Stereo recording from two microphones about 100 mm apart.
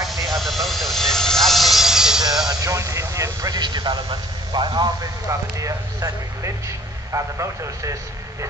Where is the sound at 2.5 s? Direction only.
35° right (ahead or behind).